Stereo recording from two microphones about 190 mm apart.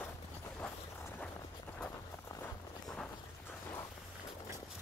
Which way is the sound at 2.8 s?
5° left (ahead or behind).